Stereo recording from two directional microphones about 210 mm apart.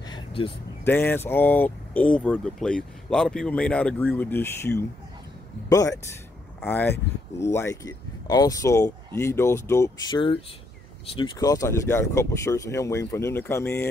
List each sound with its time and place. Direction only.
0.1 s vehicle: 25° left (ahead or behind)
0.8 s speech: 10° left (ahead or behind)